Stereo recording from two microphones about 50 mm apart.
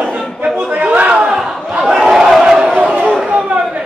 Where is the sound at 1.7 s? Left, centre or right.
Centre.